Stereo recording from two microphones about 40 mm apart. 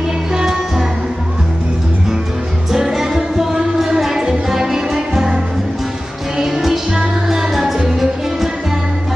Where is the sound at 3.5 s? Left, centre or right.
Centre.